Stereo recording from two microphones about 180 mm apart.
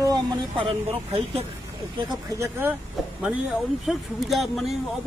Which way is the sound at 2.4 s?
10° right (ahead or behind).